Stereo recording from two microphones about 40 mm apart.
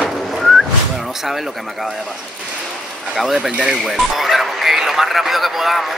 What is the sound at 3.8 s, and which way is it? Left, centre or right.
Speech, centre.